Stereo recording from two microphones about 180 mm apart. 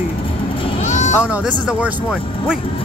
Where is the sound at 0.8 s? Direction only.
40° left (ahead or behind).